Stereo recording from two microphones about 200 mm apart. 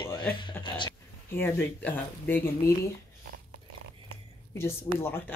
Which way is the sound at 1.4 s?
10° left (ahead or behind).